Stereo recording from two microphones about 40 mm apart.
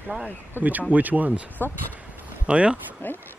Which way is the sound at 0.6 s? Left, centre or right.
Left.